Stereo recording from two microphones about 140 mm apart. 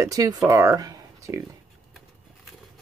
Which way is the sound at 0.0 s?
25° right (ahead or behind).